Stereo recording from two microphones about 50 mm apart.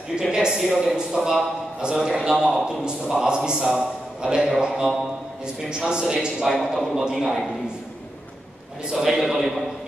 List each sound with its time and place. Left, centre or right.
0.3 s a man's voice: centre
8.9 s a man's voice: centre